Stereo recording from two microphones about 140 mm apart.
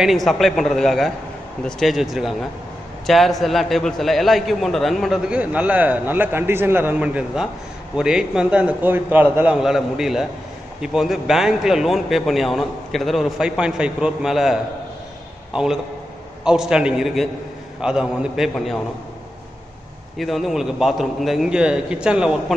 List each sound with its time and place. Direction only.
0.0 s a man's voice: centre (ahead or behind)
20.2 s a man's voice: centre (ahead or behind)